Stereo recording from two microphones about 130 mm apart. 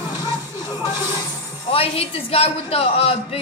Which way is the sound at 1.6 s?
45° left (ahead or behind).